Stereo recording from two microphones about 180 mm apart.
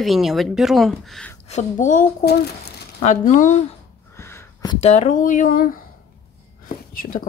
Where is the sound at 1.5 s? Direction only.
45° left (ahead or behind).